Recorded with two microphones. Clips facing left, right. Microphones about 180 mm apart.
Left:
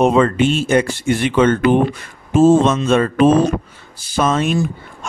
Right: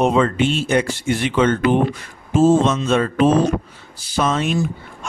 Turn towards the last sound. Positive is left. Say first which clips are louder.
# left 3 dB
turn(degrees=50)  # may be behind; listen again after turning